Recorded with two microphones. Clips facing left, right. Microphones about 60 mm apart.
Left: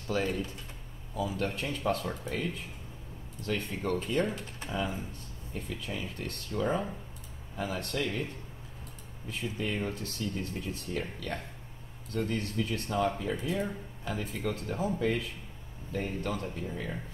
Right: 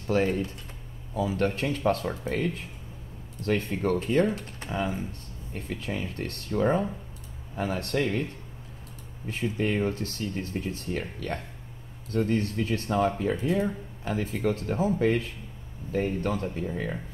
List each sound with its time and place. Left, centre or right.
0.0 s speech: right
1.1 s speech: right
9.3 s speech: right
13.2 s speech: right
14.0 s speech: right
15.0 s speech: right